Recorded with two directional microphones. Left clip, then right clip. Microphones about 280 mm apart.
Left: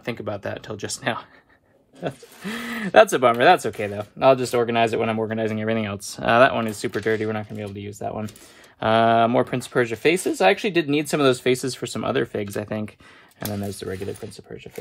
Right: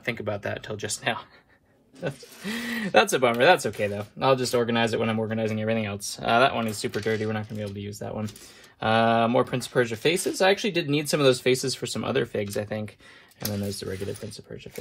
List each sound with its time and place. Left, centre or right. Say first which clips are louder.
0.0 s speech: left 1 dB; centre
2.4 s speech: left 1 dB; left